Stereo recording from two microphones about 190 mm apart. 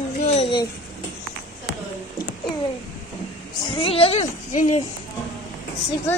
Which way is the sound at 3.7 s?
30° left (ahead or behind).